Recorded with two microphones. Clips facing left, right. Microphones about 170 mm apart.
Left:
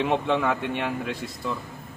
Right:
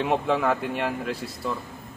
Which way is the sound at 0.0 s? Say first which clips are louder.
Even; centre (ahead or behind).